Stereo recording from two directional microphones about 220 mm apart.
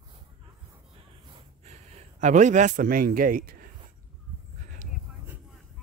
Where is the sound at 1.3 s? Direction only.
30° right (ahead or behind).